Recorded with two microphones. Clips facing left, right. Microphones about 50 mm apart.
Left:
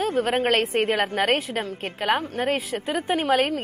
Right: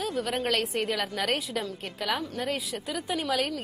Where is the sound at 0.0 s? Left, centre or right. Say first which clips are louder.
Left 7 dB; left.